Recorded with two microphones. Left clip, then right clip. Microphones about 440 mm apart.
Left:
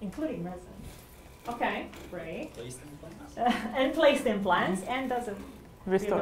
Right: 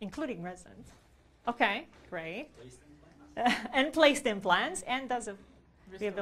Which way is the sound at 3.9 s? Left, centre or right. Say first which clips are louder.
Left 1 dB; right.